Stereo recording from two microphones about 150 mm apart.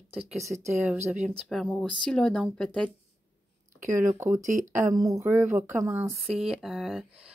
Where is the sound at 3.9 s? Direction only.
20° right (ahead or behind).